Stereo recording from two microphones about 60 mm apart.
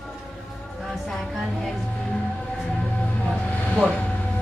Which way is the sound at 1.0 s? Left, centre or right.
Centre.